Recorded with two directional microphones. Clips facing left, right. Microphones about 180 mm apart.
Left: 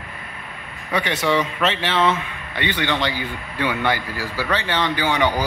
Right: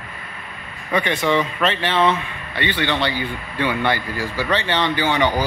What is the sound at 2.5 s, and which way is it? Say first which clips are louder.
A man's voice: right 1 dB; 15° left (ahead or behind).